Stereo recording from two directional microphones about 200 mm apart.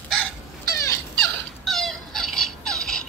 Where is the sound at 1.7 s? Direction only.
Centre (ahead or behind).